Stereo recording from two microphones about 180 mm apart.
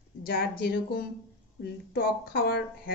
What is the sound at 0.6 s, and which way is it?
Speech, 60° left (ahead or behind).